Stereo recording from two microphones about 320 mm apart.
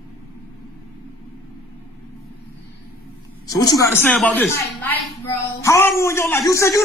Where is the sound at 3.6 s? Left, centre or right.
Centre.